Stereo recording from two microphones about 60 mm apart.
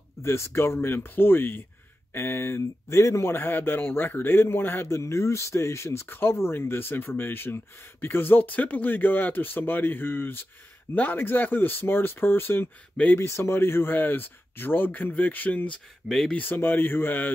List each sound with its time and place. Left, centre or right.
0.2 s speech: left
16.1 s speech: centre
16.3 s speech: left